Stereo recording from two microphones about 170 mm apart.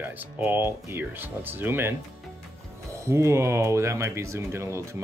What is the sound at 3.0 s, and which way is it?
Speech, 15° right (ahead or behind).